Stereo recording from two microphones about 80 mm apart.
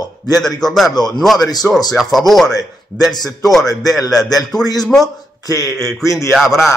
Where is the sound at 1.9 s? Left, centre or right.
Centre.